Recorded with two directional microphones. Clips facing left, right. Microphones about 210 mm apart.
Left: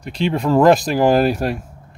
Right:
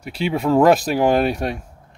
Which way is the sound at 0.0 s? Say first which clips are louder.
Left 1 dB; 5° right (ahead or behind).